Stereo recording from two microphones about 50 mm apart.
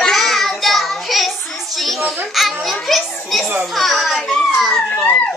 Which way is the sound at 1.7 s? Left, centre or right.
Centre.